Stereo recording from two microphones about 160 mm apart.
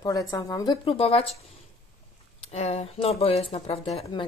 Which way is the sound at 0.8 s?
35° left (ahead or behind).